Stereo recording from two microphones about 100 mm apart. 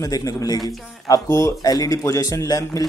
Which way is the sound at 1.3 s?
30° left (ahead or behind).